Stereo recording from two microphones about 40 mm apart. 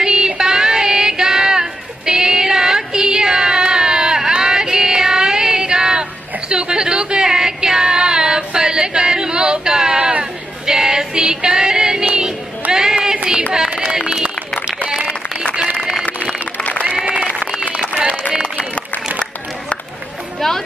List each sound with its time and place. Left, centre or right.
0.0 s child singing: centre
0.4 s a sound: centre
9.9 s a sound: right
10.7 s female singing: centre
12.7 s a sound: centre
13.5 s run: right
16.5 s run: left
17.0 s applause: centre
20.3 s music: centre